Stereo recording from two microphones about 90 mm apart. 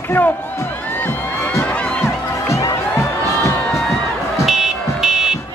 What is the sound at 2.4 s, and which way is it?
Music, 35° left (ahead or behind).